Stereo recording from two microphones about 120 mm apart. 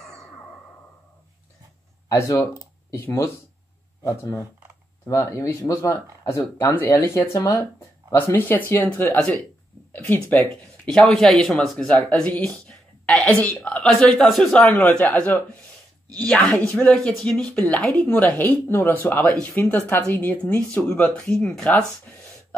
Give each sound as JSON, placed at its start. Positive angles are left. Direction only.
{"t": 2.0, "sound": "speech", "side_deg": 25}